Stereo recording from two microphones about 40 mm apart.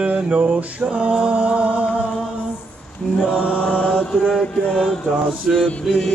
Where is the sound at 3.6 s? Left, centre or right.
Left.